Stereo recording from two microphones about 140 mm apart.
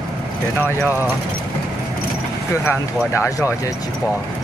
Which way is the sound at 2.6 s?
20° left (ahead or behind).